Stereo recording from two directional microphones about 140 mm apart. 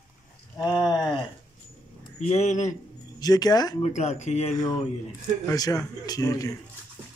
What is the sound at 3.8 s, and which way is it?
Speech, 55° left (ahead or behind).